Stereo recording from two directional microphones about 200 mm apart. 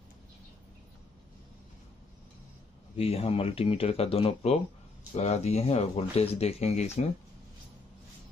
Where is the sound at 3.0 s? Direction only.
30° left (ahead or behind).